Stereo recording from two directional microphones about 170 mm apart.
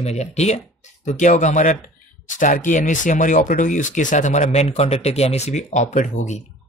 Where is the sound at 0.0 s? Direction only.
40° left (ahead or behind).